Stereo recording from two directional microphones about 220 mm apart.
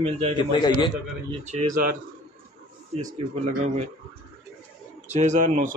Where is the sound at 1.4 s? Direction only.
35° right (ahead or behind).